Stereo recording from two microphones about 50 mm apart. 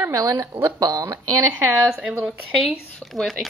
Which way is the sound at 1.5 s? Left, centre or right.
Right.